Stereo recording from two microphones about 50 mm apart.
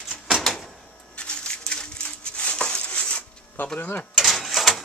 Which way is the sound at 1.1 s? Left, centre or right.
Left.